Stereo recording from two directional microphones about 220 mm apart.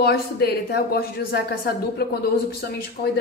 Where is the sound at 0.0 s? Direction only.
45° left (ahead or behind).